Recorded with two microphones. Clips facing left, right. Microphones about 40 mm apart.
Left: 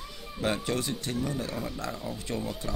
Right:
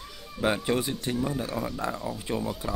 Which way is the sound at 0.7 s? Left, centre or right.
Centre.